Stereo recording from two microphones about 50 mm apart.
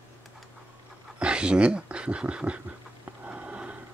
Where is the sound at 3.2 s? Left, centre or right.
Right.